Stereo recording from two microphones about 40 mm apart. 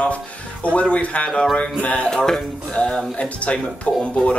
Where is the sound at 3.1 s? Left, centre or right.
Left.